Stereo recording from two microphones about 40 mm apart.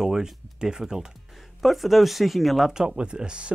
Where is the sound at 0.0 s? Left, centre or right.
Centre.